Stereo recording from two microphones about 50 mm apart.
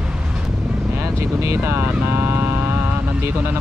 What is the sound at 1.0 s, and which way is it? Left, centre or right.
Speech, right.